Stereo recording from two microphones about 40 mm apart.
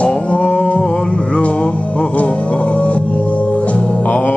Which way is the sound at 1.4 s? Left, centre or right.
Left.